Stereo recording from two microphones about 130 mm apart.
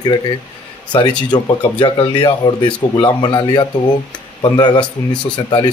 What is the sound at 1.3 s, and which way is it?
Speech, 35° left (ahead or behind).